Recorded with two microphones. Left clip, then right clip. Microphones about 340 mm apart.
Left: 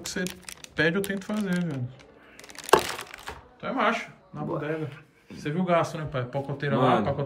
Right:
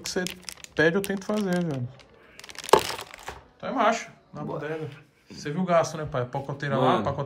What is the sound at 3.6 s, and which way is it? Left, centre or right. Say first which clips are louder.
Speech: right 2 dB; centre.